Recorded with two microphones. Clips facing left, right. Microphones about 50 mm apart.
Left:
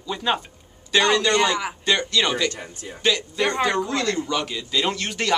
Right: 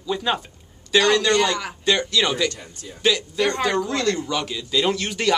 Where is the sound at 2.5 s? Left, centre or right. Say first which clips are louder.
Left 3 dB; left.